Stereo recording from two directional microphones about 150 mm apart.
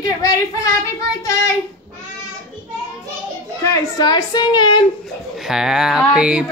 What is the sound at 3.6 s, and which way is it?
A woman's voice, 25° left (ahead or behind).